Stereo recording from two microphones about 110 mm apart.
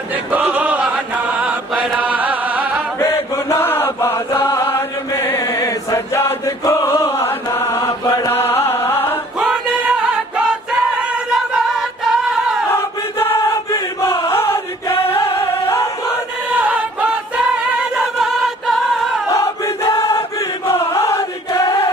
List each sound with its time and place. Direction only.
0.1 s choir: 15° right (ahead or behind)
1.7 s chant: 10° right (ahead or behind)
3.0 s chant: 25° left (ahead or behind)
7.8 s chant: 35° left (ahead or behind)
8.3 s music: 20° left (ahead or behind)
9.4 s music: 10° right (ahead or behind)
12.7 s choir: 20° left (ahead or behind)
13.7 s chant: 30° left (ahead or behind)
14.3 s music: 25° left (ahead or behind)
16.4 s music: 10° right (ahead or behind)
19.3 s crowd: 30° left (ahead or behind)
20.3 s chant: 25° left (ahead or behind)